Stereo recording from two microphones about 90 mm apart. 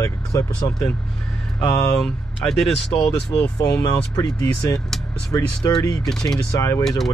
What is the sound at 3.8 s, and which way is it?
Speech, 45° left (ahead or behind).